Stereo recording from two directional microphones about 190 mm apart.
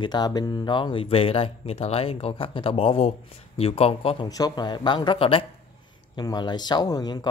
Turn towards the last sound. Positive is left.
turn(degrees=20)  # may be behind; listen again after turning